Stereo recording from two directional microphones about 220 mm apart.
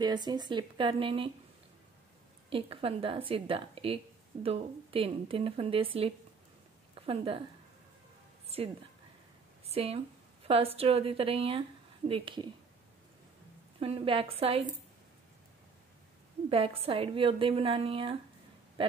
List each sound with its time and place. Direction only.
0.0 s a woman's voice: 20° right (ahead or behind)
2.5 s a woman's voice: 25° right (ahead or behind)
8.5 s a woman's voice: 25° right (ahead or behind)
13.7 s a woman's voice: 25° right (ahead or behind)
16.4 s a woman's voice: 25° right (ahead or behind)